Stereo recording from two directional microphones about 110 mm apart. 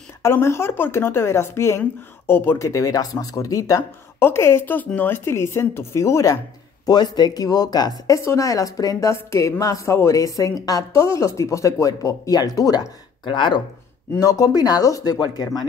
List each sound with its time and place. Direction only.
0.2 s speech: 25° left (ahead or behind)
6.9 s speech: 40° left (ahead or behind)
13.2 s speech: 45° left (ahead or behind)
14.1 s speech: 30° left (ahead or behind)